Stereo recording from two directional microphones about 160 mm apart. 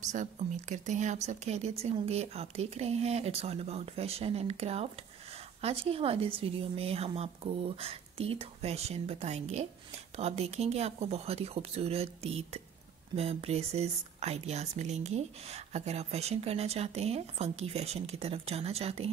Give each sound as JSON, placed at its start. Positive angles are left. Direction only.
{"t": 0.0, "sound": "speech", "side_deg": -50}